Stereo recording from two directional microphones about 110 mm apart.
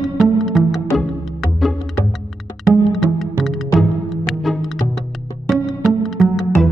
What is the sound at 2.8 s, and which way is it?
Music, centre (ahead or behind).